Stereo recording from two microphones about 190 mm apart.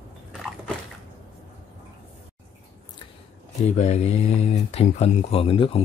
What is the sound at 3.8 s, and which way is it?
Speech, 35° left (ahead or behind).